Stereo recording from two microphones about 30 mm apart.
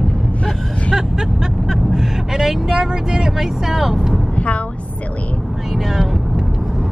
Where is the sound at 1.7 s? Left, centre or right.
Centre.